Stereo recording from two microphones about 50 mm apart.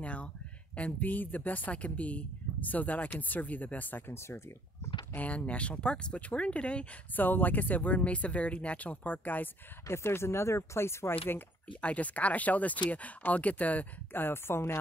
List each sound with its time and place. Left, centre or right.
0.0 s a sound: left
0.7 s speech: left
5.1 s speech: left
7.2 s speech: left
9.8 s speech: left
11.8 s speech: left
14.1 s speech: left